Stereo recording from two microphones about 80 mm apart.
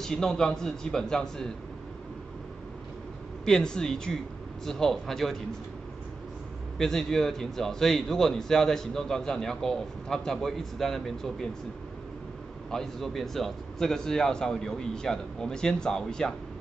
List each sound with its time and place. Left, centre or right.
0.0 s a man's voice: centre
3.4 s a man's voice: centre
6.8 s a man's voice: centre
12.7 s a man's voice: centre